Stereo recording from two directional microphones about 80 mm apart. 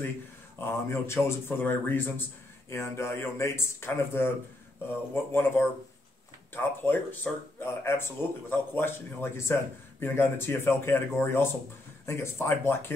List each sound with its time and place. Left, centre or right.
0.6 s a man's voice: left